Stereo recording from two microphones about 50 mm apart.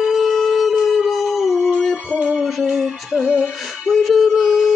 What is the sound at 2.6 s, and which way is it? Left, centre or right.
Music, centre.